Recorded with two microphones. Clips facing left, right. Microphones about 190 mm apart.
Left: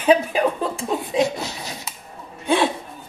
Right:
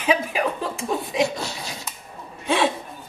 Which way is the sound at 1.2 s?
20° left (ahead or behind).